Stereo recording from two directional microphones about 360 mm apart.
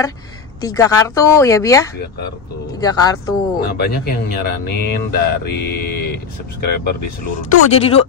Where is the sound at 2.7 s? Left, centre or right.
Centre.